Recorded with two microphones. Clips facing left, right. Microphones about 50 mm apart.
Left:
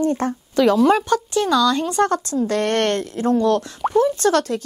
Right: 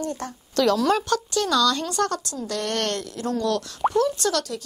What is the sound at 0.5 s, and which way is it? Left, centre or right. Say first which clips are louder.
A woman's voice: left 5 dB; centre.